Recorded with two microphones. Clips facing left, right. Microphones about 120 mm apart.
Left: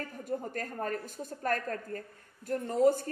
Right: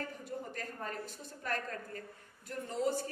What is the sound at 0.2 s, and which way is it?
A woman's voice, 45° left (ahead or behind).